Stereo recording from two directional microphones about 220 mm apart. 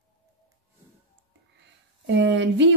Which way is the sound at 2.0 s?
55° right (ahead or behind).